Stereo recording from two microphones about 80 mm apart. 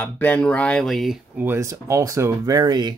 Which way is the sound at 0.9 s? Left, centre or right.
Centre.